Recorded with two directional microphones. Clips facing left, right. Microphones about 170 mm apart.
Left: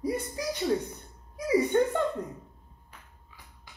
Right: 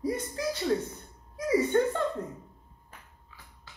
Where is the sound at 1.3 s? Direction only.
15° left (ahead or behind).